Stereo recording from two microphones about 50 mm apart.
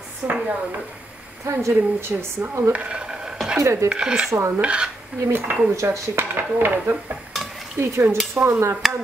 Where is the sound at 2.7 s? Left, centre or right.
Right.